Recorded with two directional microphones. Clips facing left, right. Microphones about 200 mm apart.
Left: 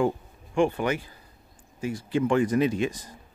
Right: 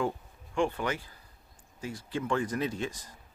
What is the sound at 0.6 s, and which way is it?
Speech, 15° left (ahead or behind).